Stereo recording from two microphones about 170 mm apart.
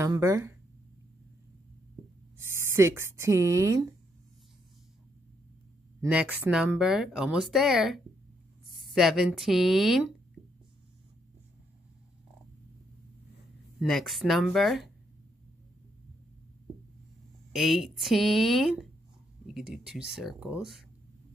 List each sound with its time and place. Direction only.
0.0 s speech: 20° right (ahead or behind)
2.3 s speech: 15° right (ahead or behind)
5.9 s speech: 10° right (ahead or behind)
10.4 s a sound: 40° right (ahead or behind)
13.7 s speech: centre (ahead or behind)
17.5 s speech: centre (ahead or behind)